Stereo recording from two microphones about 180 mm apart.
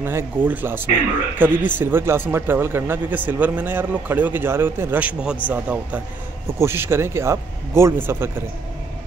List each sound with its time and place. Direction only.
0.0 s speech: 10° right (ahead or behind)